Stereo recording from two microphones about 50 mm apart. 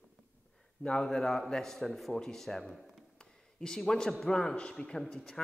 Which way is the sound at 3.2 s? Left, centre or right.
Centre.